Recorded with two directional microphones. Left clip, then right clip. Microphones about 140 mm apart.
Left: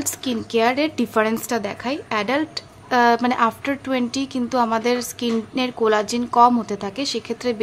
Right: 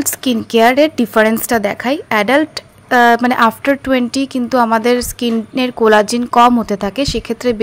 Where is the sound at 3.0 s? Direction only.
30° right (ahead or behind).